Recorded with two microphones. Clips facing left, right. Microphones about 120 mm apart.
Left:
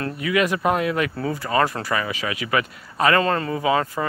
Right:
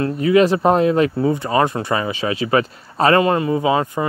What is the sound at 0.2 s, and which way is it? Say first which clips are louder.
Speech: right 7 dB; 30° right (ahead or behind).